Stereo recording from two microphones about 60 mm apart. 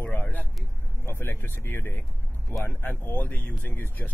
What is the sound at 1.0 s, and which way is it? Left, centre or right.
Speech, left.